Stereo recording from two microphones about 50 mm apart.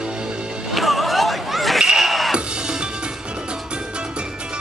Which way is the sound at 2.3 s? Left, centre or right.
Centre.